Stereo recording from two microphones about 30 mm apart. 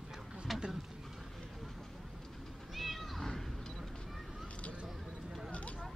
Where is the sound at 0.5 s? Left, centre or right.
Centre.